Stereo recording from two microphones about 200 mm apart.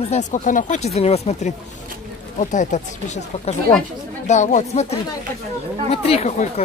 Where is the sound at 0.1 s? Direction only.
35° left (ahead or behind).